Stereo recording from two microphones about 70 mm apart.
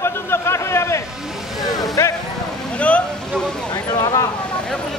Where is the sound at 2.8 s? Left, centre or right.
Left.